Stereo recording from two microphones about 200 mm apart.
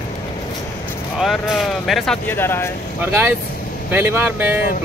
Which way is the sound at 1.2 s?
Centre (ahead or behind).